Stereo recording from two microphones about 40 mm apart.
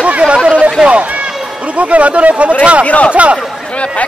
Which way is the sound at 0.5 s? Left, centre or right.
Right.